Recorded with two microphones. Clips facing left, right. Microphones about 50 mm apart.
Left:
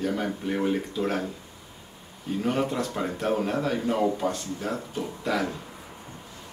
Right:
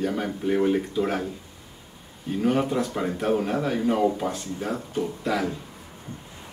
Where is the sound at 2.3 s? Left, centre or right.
Centre.